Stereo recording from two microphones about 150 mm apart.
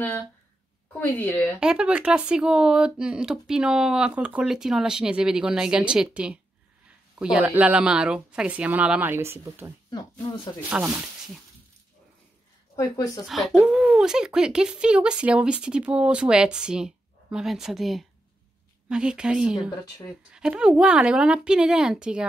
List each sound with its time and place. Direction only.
0.9 s a woman's voice: 15° left (ahead or behind)
1.6 s speech: 5° right (ahead or behind)
10.7 s speech: 10° right (ahead or behind)
12.7 s speech: 25° left (ahead or behind)
13.3 s speech: centre (ahead or behind)